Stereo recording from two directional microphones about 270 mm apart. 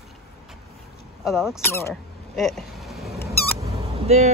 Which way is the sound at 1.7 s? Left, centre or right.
Centre.